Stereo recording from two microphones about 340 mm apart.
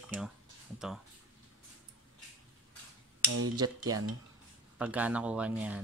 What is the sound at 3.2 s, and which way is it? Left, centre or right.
Cutlery, right.